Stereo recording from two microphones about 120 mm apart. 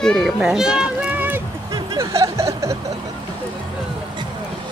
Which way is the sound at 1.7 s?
30° right (ahead or behind).